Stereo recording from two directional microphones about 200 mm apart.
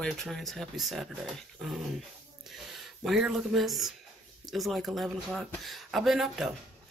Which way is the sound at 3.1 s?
Centre (ahead or behind).